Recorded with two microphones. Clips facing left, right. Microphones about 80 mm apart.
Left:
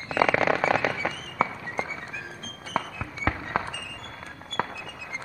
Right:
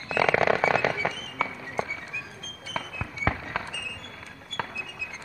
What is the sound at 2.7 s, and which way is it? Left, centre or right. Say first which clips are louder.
Music: left 4 dB; left.